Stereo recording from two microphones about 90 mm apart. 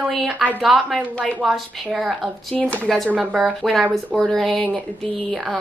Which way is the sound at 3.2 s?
Centre (ahead or behind).